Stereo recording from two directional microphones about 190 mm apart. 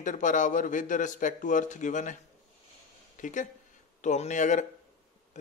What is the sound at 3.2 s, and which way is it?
Speech, 40° left (ahead or behind).